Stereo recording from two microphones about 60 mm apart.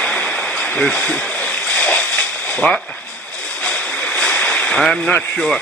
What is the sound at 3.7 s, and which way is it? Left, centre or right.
Boat, left.